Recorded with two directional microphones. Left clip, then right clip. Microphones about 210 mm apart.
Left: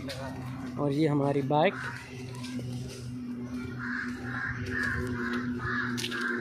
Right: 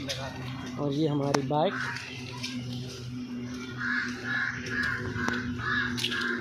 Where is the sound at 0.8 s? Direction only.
5° left (ahead or behind).